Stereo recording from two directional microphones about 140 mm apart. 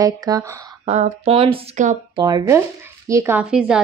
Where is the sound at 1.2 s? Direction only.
40° right (ahead or behind); by 3.3 s 20° right (ahead or behind).